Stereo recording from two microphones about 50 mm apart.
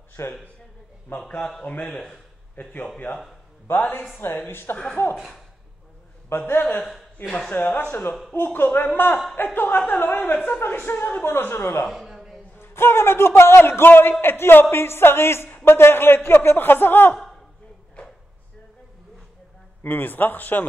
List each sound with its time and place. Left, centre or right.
0.2 s a man's voice: left
1.1 s a man's voice: left
1.6 s a man's voice: centre
2.6 s a man's voice: left
5.0 s speech: left
6.2 s a man's voice: left
11.9 s a sound: centre
12.5 s a man's voice: left
19.8 s a man's voice: left